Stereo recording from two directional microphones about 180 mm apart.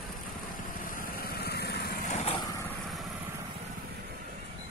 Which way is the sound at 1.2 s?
60° left (ahead or behind).